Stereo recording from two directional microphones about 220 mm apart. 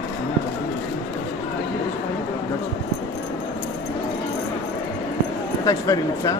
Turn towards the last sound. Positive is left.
turn(degrees=15)  # may be behind; listen again after turning